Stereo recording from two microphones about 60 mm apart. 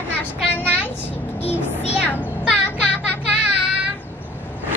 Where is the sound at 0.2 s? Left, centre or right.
Left.